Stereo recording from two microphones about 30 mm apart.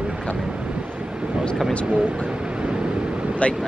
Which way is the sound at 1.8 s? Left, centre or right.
Right.